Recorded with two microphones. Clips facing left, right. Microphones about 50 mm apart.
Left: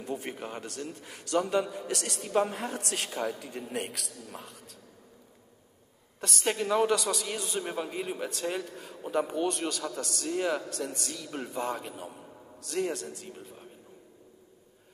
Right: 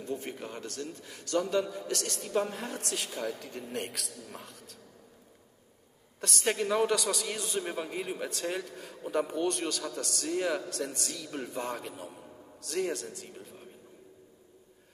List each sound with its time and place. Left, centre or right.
0.0 s a man's voice: left
2.9 s a man's voice: left
3.3 s a man's voice: centre
6.2 s a man's voice: centre